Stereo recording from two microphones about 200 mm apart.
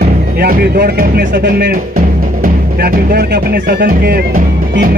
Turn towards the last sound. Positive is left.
turn(degrees=-45)  # may be behind; listen again after turning